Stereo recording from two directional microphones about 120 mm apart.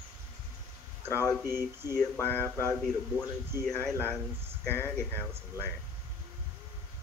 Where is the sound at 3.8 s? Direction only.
5° left (ahead or behind).